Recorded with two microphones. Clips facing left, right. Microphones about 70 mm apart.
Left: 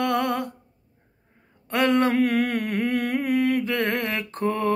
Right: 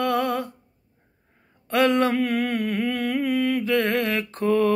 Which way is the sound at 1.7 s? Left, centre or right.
Left.